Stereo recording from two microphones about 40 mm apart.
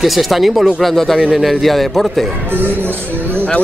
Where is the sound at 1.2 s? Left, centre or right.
Centre.